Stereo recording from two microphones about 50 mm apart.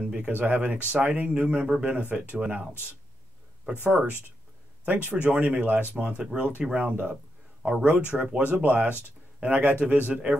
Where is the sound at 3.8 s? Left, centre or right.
Right.